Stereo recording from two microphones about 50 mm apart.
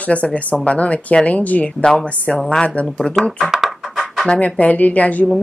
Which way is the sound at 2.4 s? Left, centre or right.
Centre.